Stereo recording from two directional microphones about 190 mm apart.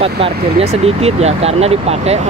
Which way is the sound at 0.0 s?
30° right (ahead or behind).